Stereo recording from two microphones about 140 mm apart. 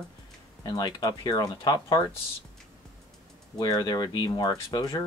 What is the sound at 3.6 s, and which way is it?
Speech, 30° left (ahead or behind).